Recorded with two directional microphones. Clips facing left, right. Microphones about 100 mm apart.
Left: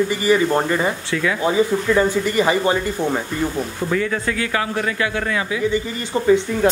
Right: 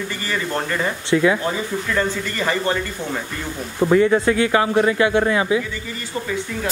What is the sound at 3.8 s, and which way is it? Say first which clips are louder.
A man's voice: right 8 dB; 25° right (ahead or behind).